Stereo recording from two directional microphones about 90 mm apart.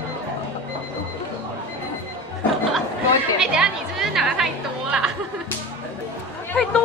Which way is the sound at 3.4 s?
5° right (ahead or behind).